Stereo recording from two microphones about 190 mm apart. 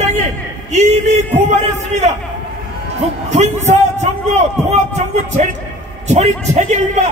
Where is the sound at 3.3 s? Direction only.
35° right (ahead or behind).